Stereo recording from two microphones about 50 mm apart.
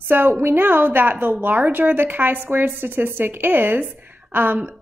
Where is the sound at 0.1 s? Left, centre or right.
Right.